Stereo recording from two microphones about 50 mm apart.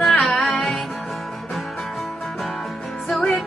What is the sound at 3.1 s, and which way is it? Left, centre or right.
Music, left.